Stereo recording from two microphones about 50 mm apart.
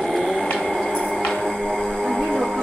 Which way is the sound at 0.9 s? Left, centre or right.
Centre.